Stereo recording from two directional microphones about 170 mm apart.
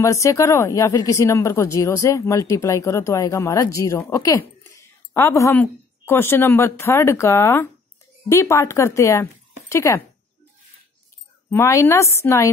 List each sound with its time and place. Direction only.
0.0 s speech: 20° left (ahead or behind)
11.5 s speech: 15° left (ahead or behind)